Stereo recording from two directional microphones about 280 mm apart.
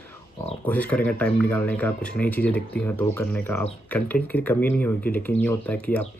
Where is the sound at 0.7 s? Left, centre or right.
Centre.